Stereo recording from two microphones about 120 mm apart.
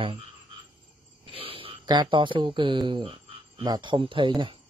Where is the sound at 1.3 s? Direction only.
50° right (ahead or behind).